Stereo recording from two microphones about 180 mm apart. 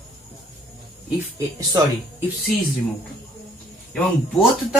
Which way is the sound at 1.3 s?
15° right (ahead or behind).